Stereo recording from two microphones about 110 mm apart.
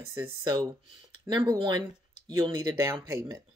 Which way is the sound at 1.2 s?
35° right (ahead or behind).